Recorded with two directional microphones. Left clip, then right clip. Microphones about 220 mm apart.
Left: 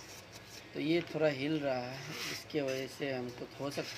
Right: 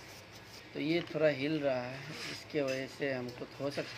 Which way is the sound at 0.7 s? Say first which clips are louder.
Even; 5° right (ahead or behind).